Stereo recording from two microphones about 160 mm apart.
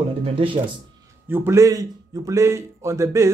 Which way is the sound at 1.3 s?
15° right (ahead or behind).